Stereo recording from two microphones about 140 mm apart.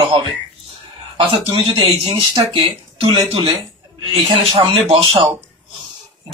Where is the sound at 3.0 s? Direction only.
35° right (ahead or behind).